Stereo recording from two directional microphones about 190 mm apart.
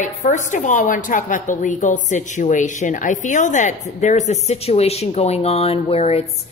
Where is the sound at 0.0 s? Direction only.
40° left (ahead or behind).